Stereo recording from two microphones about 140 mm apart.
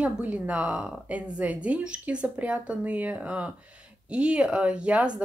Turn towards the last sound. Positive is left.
turn(degrees=-10)  # may be behind; listen again after turning